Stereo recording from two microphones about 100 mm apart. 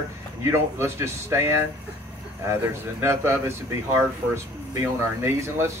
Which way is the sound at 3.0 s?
25° right (ahead or behind).